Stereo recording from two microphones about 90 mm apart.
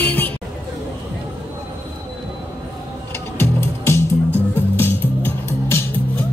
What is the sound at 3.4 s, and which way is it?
Music, 30° left (ahead or behind).